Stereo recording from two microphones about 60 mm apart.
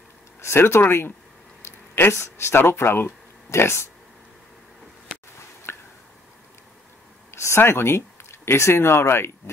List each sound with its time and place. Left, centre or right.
0.4 s speech: left
5.7 s drip: left
7.2 s speech: left